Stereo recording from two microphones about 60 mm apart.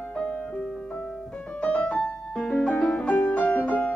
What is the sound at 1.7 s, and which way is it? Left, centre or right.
Music, centre.